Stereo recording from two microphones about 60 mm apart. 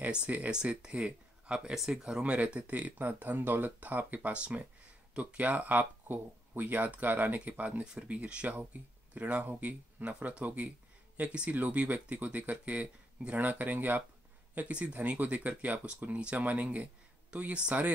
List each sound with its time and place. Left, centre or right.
0.1 s speech: right